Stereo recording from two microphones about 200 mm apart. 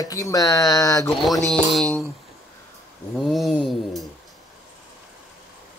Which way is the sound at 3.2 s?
Centre (ahead or behind).